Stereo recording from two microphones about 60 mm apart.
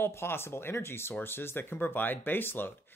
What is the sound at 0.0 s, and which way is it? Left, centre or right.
Speech, left.